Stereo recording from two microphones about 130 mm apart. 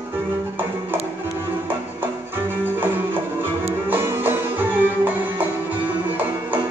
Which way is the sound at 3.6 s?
15° right (ahead or behind).